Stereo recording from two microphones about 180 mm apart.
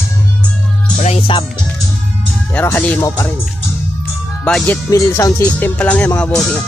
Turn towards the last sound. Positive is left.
turn(degrees=5)  # may be behind; listen again after turning